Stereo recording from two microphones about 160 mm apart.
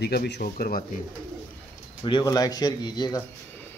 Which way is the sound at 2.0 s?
25° left (ahead or behind).